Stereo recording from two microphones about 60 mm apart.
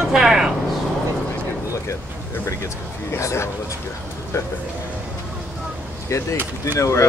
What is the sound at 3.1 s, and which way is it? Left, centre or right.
Speech, left.